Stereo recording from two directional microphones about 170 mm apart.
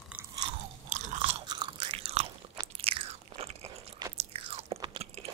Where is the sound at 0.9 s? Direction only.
45° right (ahead or behind).